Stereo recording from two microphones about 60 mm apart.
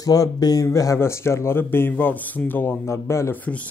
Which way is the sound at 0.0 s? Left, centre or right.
Left.